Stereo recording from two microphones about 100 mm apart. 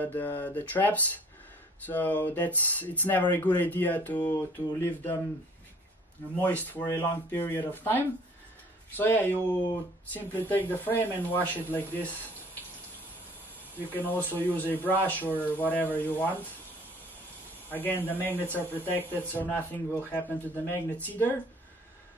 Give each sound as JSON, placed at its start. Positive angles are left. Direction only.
{"t": 0.0, "sound": "speech", "side_deg": 20}
{"t": 4.3, "sound": "speech", "side_deg": 30}
{"t": 6.4, "sound": "speech", "side_deg": 20}
{"t": 6.9, "sound": "speech", "side_deg": 30}
{"t": 13.7, "sound": "speech", "side_deg": 20}
{"t": 17.6, "sound": "speech", "side_deg": 20}